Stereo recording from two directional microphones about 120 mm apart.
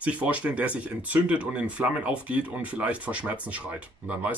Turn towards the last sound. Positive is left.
turn(degrees=-15)  # may be behind; listen again after turning